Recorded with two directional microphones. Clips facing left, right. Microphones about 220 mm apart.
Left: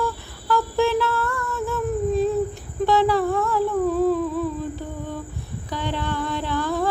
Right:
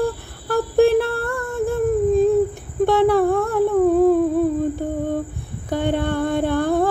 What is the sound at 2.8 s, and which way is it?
Humming, 55° right (ahead or behind).